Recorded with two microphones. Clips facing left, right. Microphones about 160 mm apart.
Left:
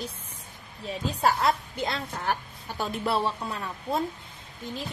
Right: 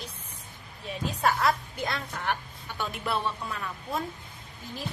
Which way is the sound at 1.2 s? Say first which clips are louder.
Left 1 dB; 25° left (ahead or behind).